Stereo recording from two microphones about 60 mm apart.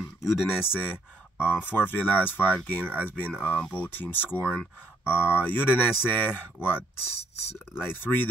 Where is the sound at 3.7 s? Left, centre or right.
Left.